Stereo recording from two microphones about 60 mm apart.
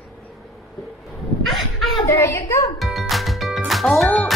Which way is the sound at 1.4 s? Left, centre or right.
Centre.